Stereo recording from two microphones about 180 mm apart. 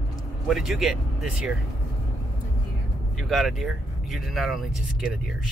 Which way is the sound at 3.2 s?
Centre (ahead or behind).